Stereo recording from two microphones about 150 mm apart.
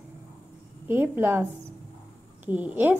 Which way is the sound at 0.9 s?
15° right (ahead or behind).